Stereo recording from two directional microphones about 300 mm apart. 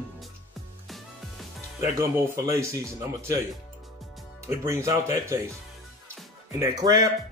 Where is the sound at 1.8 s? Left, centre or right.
Centre.